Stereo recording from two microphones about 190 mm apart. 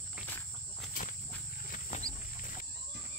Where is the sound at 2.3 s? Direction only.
45° left (ahead or behind).